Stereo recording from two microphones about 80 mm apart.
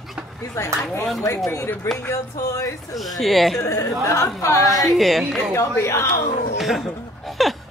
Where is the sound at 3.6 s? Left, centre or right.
Left.